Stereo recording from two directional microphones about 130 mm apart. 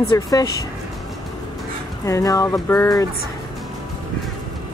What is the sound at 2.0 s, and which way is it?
Speech, 25° left (ahead or behind).